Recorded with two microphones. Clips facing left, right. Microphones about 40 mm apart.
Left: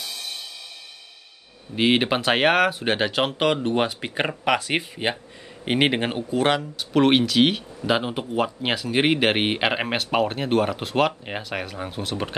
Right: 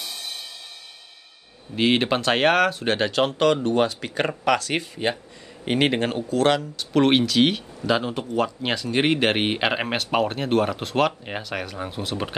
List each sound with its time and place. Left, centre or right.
1.8 s speech: centre
7.8 s speech: centre